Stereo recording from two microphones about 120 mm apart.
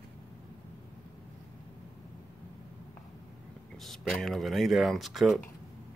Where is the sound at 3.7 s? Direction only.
5° left (ahead or behind).